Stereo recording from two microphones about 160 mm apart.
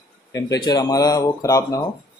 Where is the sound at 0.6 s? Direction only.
25° left (ahead or behind).